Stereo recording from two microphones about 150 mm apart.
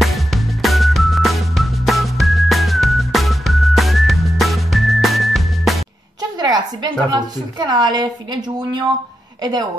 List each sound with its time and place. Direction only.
0.0 s music: centre (ahead or behind)
6.3 s a woman's voice: 25° right (ahead or behind)
9.4 s a woman's voice: 25° right (ahead or behind)